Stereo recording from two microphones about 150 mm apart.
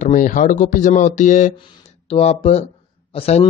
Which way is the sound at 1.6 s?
35° left (ahead or behind).